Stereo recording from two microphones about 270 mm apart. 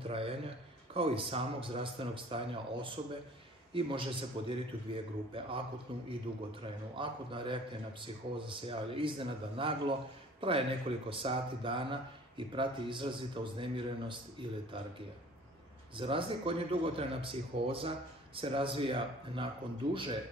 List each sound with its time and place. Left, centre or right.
0.0 s a sound: right
0.9 s speech: right
6.6 s speech: centre
16.0 s speech: centre